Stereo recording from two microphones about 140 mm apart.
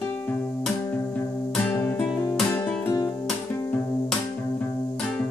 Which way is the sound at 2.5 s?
25° left (ahead or behind).